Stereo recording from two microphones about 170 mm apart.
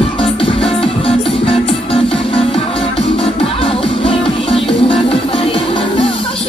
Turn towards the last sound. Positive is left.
turn(degrees=30)  # may be behind; listen again after turning